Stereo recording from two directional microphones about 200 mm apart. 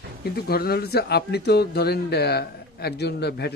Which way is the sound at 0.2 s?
50° left (ahead or behind).